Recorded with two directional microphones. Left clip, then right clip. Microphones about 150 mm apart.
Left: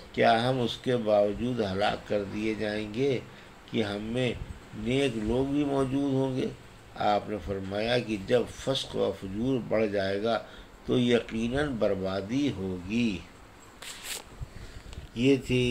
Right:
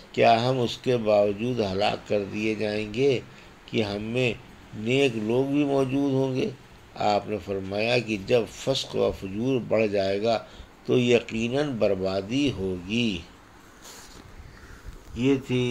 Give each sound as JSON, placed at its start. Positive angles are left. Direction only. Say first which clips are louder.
{"t": 0.1, "sound": "speech", "louder": "right 4 dB", "side_deg": -25}